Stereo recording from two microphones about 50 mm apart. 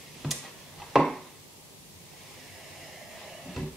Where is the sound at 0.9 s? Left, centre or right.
Centre.